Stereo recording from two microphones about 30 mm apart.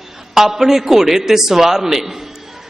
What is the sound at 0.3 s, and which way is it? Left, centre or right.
A man's voice, centre.